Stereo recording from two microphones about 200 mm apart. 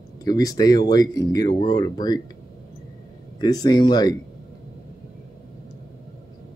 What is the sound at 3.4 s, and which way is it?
Speech, 20° left (ahead or behind).